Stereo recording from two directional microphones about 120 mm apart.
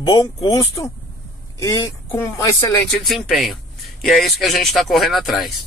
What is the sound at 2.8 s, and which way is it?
Speech, centre (ahead or behind).